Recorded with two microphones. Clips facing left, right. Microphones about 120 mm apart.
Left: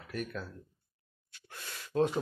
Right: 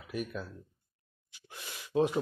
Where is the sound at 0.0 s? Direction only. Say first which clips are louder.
Right 1 dB; 10° right (ahead or behind).